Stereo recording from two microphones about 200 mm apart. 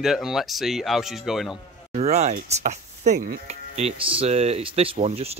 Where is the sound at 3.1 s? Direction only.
50° right (ahead or behind).